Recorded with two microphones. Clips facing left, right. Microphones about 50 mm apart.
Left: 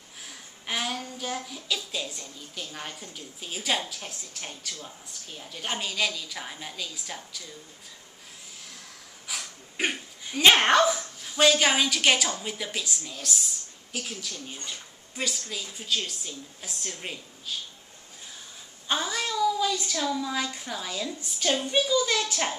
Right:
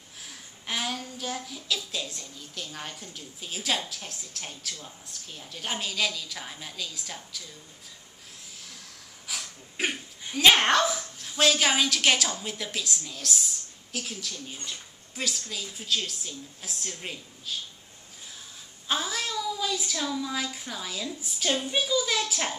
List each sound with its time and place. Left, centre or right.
0.2 s a woman's voice: centre
9.3 s a woman's voice: centre
18.9 s speech: centre